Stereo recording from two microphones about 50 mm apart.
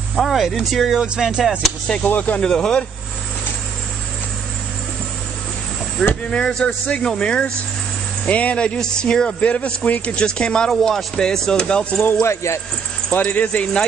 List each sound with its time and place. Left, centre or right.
0.1 s speech: centre
1.0 s music: centre
2.0 s speech: left
2.4 s speech: centre
6.0 s speech: centre
6.3 s speech: centre
9.4 s speech: left
12.2 s speech: left
13.1 s speech: left